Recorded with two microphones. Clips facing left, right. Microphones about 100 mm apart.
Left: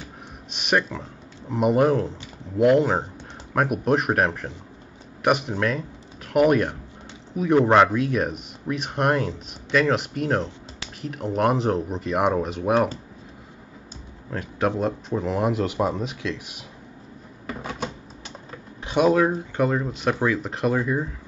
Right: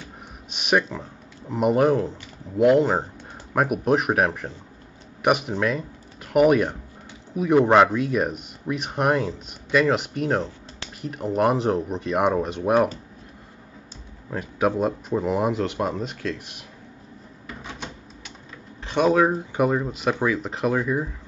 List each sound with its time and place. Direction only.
0.5 s speech: centre (ahead or behind)
14.3 s speech: 5° right (ahead or behind)
17.5 s a sound: 45° left (ahead or behind)
18.9 s speech: 5° left (ahead or behind)
19.2 s speech: 10° right (ahead or behind)